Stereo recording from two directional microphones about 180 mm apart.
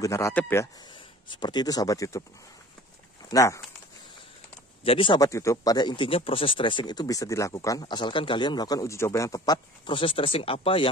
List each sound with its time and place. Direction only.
0.0 s a man's voice: 15° left (ahead or behind)
1.4 s speech: 25° left (ahead or behind)
3.3 s speech: 15° left (ahead or behind)
4.8 s speech: 30° left (ahead or behind)